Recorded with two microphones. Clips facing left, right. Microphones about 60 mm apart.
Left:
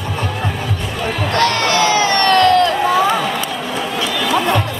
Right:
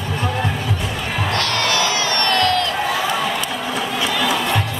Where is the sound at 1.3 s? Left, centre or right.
Left.